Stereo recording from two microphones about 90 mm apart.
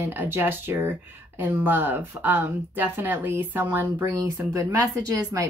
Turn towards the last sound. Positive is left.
turn(degrees=-35)  # may be behind; listen again after turning